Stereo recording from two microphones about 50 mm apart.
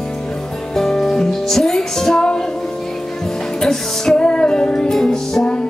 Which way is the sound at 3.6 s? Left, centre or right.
Centre.